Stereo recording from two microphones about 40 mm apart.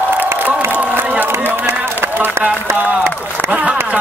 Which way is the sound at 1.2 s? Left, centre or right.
Right.